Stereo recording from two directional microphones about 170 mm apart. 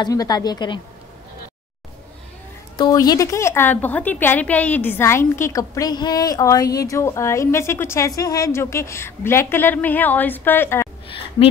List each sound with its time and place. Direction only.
0.0 s a woman's voice: 25° left (ahead or behind)
2.8 s a woman's voice: 20° left (ahead or behind)
11.1 s a sound: 30° left (ahead or behind)